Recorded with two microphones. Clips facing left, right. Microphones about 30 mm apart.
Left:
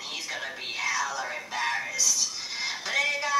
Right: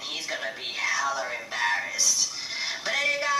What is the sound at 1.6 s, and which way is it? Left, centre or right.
Music, centre.